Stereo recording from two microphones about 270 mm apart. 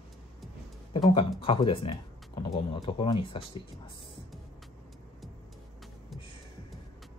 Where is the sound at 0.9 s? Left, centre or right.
Centre.